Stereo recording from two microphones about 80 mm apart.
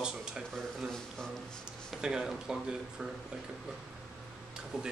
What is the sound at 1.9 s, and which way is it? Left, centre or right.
Speech, centre.